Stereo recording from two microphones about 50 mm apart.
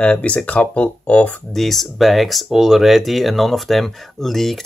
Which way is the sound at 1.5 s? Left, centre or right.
Centre.